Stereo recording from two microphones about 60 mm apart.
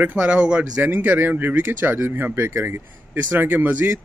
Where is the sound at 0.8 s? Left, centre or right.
Right.